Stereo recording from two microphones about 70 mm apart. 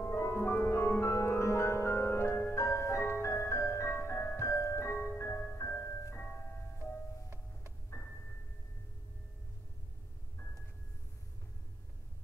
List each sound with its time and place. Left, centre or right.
0.0 s music: left
6.1 s music: left
6.8 s music: right
8.0 s music: left